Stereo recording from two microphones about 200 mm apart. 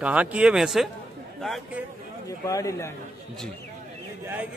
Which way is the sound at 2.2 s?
15° left (ahead or behind).